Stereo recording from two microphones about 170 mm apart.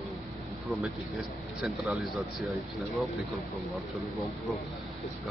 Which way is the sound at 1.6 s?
Centre (ahead or behind).